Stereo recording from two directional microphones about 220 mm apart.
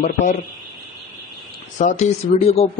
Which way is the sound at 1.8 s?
35° left (ahead or behind).